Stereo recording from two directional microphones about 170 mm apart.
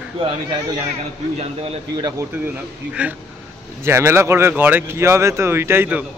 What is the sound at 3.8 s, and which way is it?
Speech, 15° right (ahead or behind).